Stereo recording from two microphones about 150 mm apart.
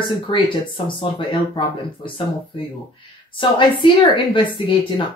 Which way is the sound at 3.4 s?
35° left (ahead or behind).